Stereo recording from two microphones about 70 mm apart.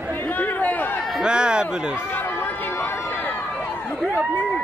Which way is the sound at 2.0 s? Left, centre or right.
Left.